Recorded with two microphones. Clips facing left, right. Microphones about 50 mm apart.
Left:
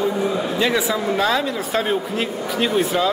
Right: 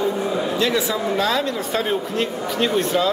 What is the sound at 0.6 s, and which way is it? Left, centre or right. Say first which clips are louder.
Speech: left 3 dB; centre.